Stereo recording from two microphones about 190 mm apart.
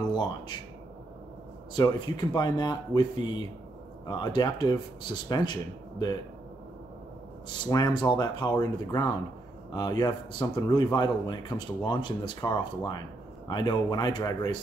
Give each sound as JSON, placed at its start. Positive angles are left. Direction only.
{"t": 0.1, "sound": "speech", "side_deg": 20}
{"t": 1.7, "sound": "speech", "side_deg": 20}
{"t": 7.4, "sound": "speech", "side_deg": 20}